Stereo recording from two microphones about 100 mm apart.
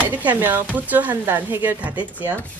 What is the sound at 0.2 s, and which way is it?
A woman's voice, 20° right (ahead or behind).